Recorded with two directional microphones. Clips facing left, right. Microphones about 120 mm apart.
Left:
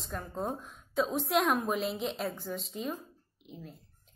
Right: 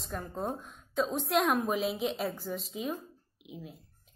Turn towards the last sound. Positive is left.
turn(degrees=-5)  # may be behind; listen again after turning